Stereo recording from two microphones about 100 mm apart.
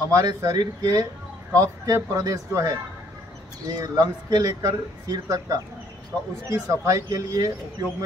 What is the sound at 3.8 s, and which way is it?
Speech, 40° right (ahead or behind).